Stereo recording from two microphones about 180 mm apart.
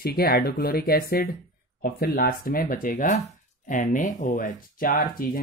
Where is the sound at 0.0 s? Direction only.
60° left (ahead or behind).